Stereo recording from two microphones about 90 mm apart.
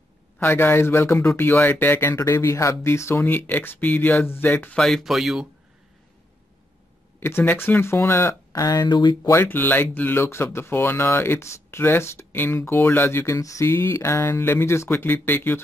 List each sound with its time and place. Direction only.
0.4 s speech: 25° left (ahead or behind)
2.1 s speech: 30° left (ahead or behind)
4.7 s speech: 5° left (ahead or behind)
7.2 s speech: 25° left (ahead or behind)
8.8 s speech: 55° left (ahead or behind)
9.3 s speech: 25° left (ahead or behind)